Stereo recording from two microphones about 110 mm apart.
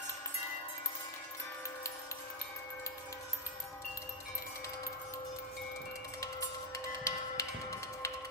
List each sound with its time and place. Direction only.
6.2 s music: 25° left (ahead or behind)